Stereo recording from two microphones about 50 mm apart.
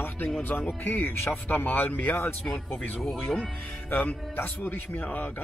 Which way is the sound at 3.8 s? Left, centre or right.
Left.